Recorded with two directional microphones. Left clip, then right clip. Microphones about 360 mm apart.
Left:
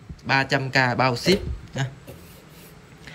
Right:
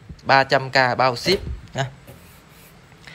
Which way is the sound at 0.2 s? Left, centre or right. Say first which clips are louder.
Right 6 dB; centre.